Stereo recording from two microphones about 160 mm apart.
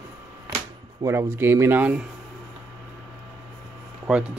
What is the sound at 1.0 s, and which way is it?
Speech, 15° right (ahead or behind).